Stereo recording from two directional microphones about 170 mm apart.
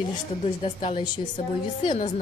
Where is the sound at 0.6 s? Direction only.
35° left (ahead or behind).